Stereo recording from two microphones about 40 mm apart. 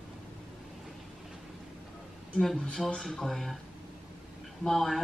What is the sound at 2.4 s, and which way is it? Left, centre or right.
Speech, centre.